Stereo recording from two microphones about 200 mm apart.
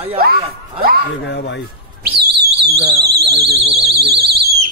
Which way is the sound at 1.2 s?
60° left (ahead or behind).